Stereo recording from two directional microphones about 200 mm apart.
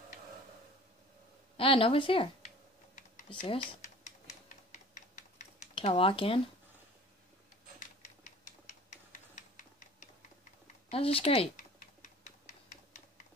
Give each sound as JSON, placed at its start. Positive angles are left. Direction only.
{"t": 1.6, "sound": "speech", "side_deg": 25}
{"t": 3.3, "sound": "typing", "side_deg": 35}
{"t": 7.8, "sound": "typewriter", "side_deg": 35}
{"t": 10.9, "sound": "typing", "side_deg": 30}